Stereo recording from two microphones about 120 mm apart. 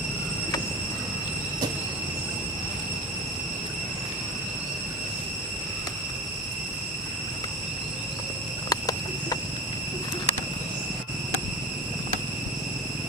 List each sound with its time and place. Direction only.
8.6 s patter: 30° left (ahead or behind)